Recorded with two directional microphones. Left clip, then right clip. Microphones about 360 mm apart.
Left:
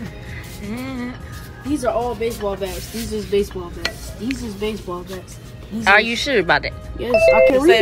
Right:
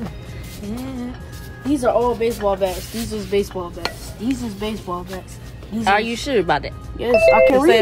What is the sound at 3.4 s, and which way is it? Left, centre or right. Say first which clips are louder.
Stir: even; right.